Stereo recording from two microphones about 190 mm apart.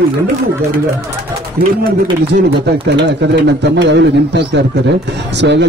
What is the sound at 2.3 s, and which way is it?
A man's voice, 60° right (ahead or behind).